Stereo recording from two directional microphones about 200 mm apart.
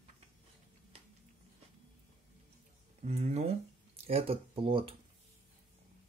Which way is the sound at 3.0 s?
35° right (ahead or behind).